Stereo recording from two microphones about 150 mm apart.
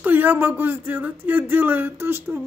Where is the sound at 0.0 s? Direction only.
10° right (ahead or behind).